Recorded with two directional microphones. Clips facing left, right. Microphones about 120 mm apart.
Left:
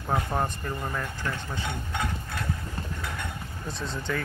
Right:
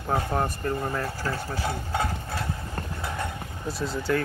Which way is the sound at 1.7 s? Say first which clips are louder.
Right 3 dB; 35° right (ahead or behind).